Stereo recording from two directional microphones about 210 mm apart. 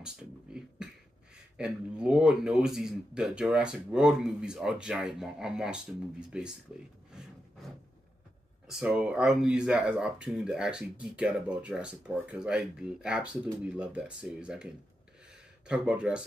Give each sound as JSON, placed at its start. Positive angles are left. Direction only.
{"t": 0.0, "sound": "beatboxing", "side_deg": -5}
{"t": 1.3, "sound": "speech", "side_deg": -5}
{"t": 8.6, "sound": "speech", "side_deg": -5}